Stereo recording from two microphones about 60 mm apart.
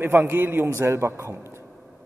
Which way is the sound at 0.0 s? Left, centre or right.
Right.